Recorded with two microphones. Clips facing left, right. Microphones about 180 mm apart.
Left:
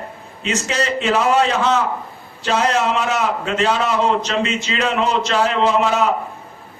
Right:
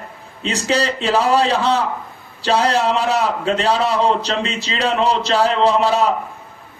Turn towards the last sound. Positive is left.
turn(degrees=-35)  # may be behind; listen again after turning